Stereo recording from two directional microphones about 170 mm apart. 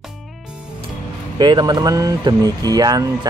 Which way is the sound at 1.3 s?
25° right (ahead or behind).